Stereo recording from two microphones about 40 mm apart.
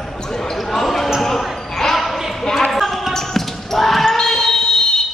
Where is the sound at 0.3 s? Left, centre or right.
Centre.